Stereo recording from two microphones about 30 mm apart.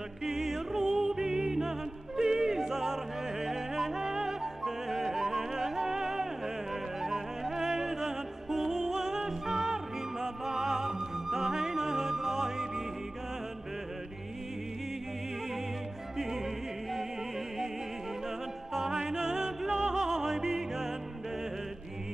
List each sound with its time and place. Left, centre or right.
0.2 s music: centre
1.2 s music: right
1.5 s opera: centre
10.2 s music: centre
18.7 s music: centre